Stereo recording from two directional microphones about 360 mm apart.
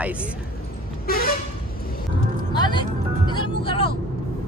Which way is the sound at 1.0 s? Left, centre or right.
Left.